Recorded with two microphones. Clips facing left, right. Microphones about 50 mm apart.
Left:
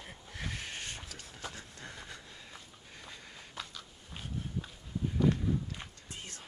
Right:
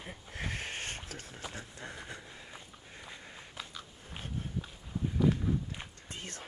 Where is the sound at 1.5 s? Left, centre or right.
Right.